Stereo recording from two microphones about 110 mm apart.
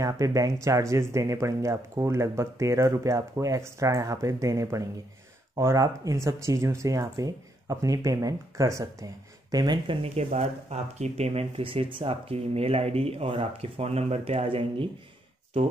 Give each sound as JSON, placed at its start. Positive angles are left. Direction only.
{"t": 0.0, "sound": "speech", "side_deg": -30}
{"t": 10.0, "sound": "speech", "side_deg": -65}